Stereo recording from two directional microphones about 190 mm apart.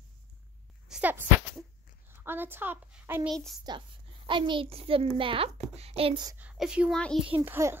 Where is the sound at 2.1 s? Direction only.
10° right (ahead or behind).